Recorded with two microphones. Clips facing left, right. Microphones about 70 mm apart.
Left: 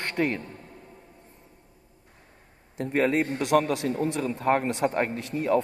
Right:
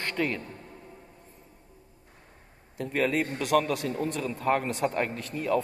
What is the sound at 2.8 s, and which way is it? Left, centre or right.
A man's voice, left.